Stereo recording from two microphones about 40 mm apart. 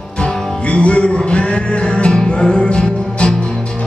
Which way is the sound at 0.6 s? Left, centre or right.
Left.